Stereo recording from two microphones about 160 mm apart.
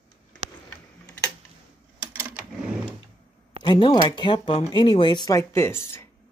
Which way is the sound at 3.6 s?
25° left (ahead or behind).